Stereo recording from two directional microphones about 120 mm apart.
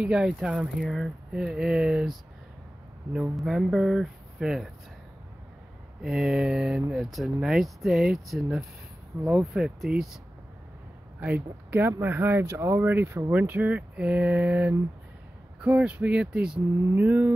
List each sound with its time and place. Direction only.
0.0 s speech: 5° right (ahead or behind)
6.0 s speech: 5° right (ahead or behind)
11.1 s speech: 15° right (ahead or behind)